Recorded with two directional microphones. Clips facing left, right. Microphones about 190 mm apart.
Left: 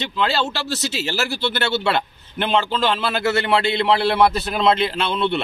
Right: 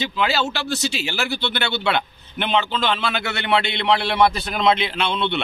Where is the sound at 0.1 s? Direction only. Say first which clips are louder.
Even; centre (ahead or behind).